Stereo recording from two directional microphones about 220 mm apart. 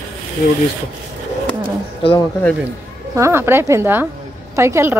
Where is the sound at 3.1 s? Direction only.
10° right (ahead or behind).